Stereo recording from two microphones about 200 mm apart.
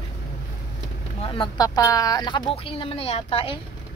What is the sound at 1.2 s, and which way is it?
Speech, 25° left (ahead or behind).